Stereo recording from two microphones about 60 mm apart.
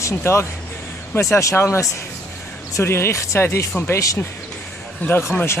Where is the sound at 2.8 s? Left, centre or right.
Left.